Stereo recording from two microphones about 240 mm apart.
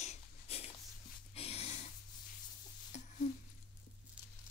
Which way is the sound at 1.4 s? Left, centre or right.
Left.